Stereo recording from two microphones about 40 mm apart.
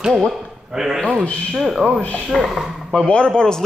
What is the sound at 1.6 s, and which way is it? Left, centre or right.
A man's voice, centre.